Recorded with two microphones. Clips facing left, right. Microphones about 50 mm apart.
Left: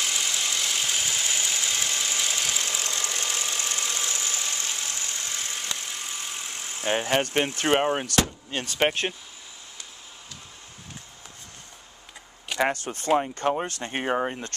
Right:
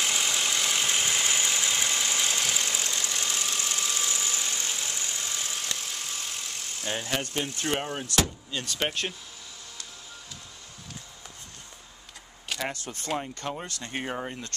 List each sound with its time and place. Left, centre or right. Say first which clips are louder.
0.0 s engine: right 1 dB; centre
1.5 s engine: right 1 dB; centre
2.9 s engine knocking: left 1 dB; centre
4.8 s vehicle: left 1 dB; centre
6.5 s speech: left 8 dB; left
8.6 s speech: left 6 dB; left
12.5 s speech: left 9 dB; left